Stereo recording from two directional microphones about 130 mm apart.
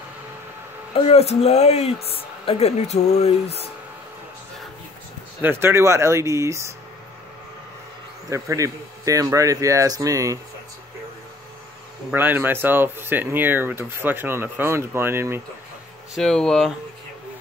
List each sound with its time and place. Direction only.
0.9 s speech: 50° left (ahead or behind)
5.4 s speech: 20° right (ahead or behind)
8.3 s speech: 25° right (ahead or behind)
12.1 s speech: 15° right (ahead or behind)
16.2 s speech: 5° left (ahead or behind)